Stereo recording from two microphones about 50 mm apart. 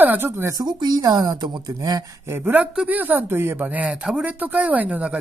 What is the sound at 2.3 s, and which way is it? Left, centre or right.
A woman's voice, right.